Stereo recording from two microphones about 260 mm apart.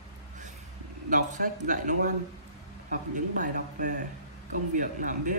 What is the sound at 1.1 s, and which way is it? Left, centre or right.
Speech, right.